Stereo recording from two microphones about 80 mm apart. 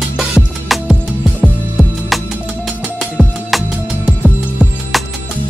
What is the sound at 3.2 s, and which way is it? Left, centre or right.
Music, centre.